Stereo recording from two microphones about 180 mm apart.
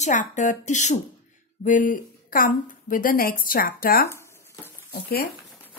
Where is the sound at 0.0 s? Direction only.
45° left (ahead or behind).